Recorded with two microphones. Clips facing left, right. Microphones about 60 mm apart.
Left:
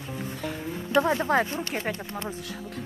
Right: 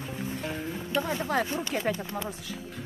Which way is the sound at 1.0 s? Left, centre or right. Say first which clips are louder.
Left 5 dB; left.